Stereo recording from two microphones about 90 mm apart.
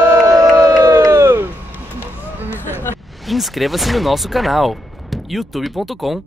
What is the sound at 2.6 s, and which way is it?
Hubbub, 25° left (ahead or behind).